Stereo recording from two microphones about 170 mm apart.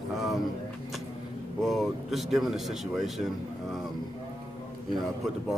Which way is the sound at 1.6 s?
Centre (ahead or behind).